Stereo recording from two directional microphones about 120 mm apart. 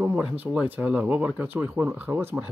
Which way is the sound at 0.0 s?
10° right (ahead or behind).